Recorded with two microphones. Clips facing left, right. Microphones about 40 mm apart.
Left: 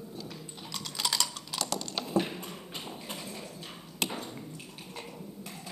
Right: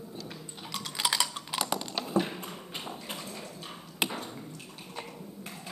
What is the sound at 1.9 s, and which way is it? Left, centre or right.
Typing, centre.